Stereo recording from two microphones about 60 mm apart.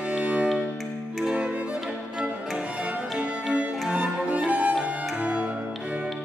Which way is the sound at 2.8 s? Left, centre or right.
Right.